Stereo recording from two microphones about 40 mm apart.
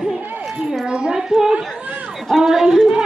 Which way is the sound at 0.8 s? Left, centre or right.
Right.